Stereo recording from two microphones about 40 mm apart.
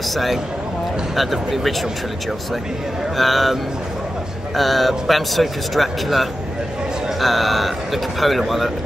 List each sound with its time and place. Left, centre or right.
0.1 s a man's voice: centre
3.2 s a man's voice: centre
4.6 s a man's voice: centre